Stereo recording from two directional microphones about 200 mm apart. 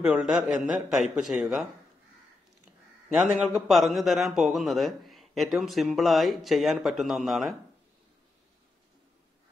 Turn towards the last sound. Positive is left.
turn(degrees=0)  # may be behind; listen again after turning